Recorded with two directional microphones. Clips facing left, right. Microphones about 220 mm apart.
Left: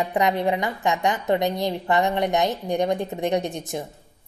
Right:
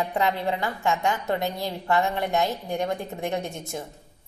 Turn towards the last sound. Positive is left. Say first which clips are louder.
# left 5 dB
turn(degrees=15)  # may be behind; listen again after turning